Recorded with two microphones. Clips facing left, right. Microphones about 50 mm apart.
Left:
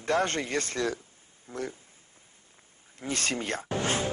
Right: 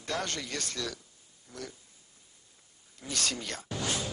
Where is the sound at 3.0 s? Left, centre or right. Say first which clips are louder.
Left 4 dB; left.